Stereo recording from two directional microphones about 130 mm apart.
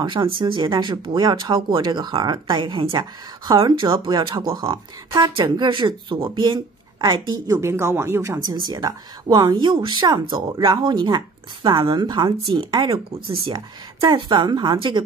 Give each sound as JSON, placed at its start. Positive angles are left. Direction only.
{"t": 0.0, "sound": "speech", "side_deg": -40}
{"t": 8.6, "sound": "speech", "side_deg": -30}